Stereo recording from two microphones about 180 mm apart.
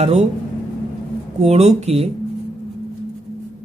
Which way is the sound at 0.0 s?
40° right (ahead or behind).